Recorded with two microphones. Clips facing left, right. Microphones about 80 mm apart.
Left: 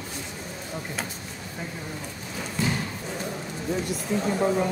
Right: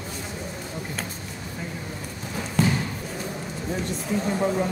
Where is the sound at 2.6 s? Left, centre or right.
Right.